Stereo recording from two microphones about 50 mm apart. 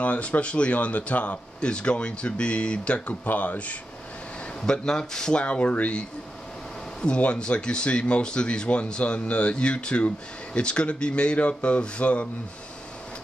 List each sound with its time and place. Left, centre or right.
0.0 s speech: left
3.1 s speech: left
4.6 s speech: centre
5.4 s speech: left